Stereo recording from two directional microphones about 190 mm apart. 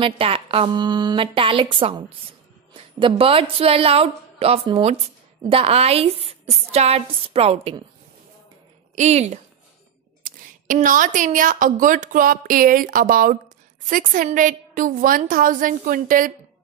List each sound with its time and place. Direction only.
0.0 s a woman's voice: 30° right (ahead or behind)
8.9 s a woman's voice: 35° right (ahead or behind)